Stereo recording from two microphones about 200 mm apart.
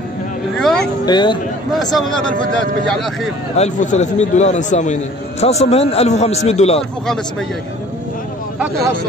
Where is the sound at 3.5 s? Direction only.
35° left (ahead or behind).